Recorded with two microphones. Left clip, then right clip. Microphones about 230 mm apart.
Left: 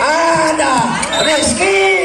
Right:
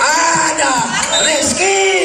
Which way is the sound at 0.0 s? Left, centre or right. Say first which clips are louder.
Left 1 dB; right.